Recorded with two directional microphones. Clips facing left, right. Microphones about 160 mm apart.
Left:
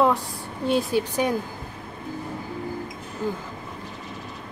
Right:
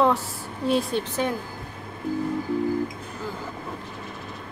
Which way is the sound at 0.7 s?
Centre (ahead or behind).